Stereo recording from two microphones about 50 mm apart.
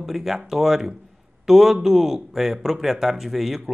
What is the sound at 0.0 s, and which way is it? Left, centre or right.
Speech, centre.